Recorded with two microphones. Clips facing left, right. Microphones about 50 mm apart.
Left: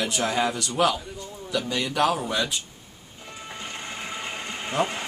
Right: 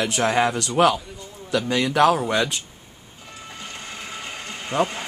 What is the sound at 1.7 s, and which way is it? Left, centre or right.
Speech, right.